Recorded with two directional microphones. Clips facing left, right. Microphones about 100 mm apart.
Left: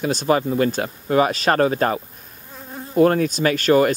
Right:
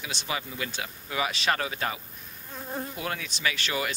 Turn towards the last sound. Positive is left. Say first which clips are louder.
# left 14 dB
turn(degrees=45)  # may be behind; listen again after turning